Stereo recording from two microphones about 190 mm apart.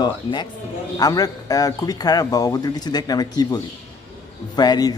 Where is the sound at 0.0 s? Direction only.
25° left (ahead or behind).